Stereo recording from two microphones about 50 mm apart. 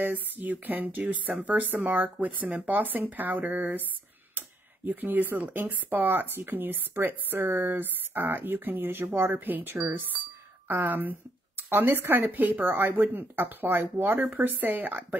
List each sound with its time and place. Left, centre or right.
0.0 s speech: right
4.4 s a sound: right
5.4 s speech: right